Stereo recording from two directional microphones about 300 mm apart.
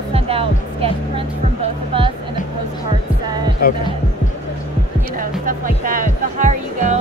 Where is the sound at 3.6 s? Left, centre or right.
Left.